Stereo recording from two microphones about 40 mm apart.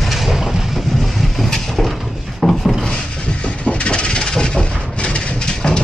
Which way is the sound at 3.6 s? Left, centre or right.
Left.